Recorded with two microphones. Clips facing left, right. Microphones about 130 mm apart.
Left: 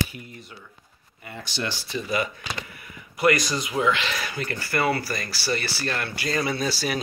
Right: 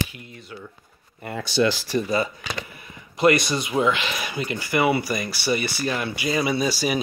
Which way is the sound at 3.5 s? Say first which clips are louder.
Right 2 dB; 25° right (ahead or behind).